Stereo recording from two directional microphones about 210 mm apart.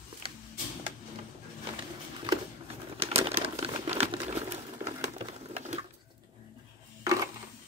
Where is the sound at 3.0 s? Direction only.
30° right (ahead or behind).